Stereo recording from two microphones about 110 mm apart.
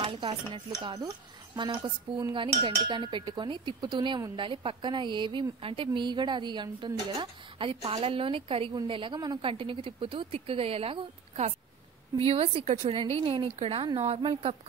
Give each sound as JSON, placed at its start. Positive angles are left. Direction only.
{"t": 0.0, "sound": "speech", "side_deg": -50}
{"t": 0.9, "sound": "speech", "side_deg": -30}
{"t": 1.8, "sound": "a woman's voice", "side_deg": -45}
{"t": 9.5, "sound": "a woman's voice", "side_deg": -55}